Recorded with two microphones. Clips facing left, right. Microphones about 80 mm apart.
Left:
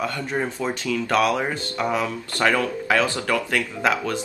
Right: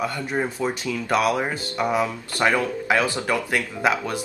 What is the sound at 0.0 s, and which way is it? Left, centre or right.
Speech, centre.